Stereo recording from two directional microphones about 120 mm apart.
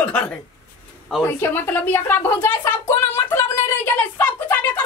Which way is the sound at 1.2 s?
20° left (ahead or behind).